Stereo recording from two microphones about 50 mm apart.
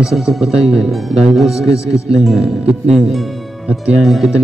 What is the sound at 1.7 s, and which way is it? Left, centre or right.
Speech, left.